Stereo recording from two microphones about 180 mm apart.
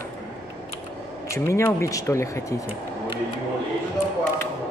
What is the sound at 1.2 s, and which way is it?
Speech, 15° left (ahead or behind).